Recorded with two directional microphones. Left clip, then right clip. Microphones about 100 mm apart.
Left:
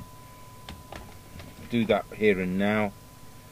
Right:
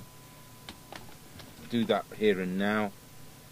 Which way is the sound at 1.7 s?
10° left (ahead or behind).